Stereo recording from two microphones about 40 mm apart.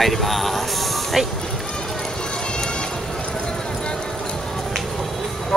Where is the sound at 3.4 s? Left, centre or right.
Centre.